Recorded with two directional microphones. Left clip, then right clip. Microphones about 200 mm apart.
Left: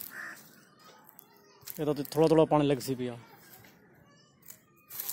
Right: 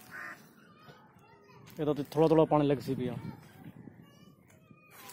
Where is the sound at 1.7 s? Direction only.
5° left (ahead or behind).